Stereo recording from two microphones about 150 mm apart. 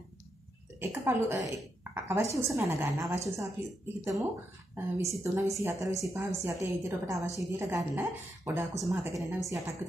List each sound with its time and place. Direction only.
0.7 s a woman's voice: 20° right (ahead or behind)